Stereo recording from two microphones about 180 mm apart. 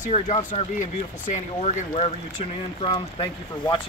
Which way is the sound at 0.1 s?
40° left (ahead or behind).